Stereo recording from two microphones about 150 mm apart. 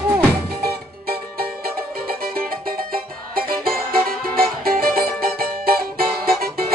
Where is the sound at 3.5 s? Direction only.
75° right (ahead or behind).